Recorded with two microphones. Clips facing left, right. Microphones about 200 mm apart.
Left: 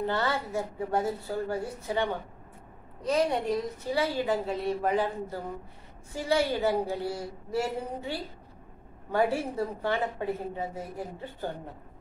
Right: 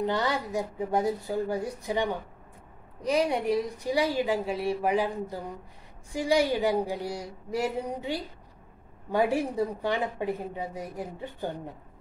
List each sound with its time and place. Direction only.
0.0 s a woman's voice: 15° right (ahead or behind)